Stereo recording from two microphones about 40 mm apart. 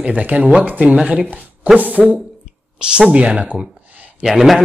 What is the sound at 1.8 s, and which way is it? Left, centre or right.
Speech, right.